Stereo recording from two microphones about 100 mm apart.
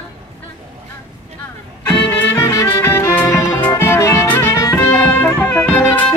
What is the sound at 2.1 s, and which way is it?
Music, 25° left (ahead or behind).